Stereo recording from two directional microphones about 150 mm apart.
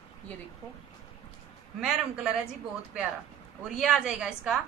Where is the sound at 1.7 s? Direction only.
5° right (ahead or behind).